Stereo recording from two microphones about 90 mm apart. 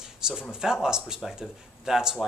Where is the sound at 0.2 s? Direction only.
5° right (ahead or behind).